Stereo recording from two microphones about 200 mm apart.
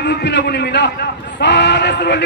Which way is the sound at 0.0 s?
60° left (ahead or behind).